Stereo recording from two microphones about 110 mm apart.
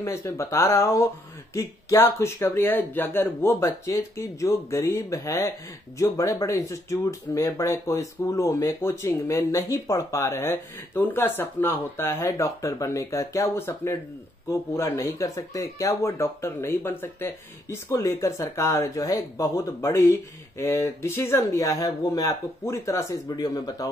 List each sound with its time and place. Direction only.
0.0 s speech: 25° left (ahead or behind)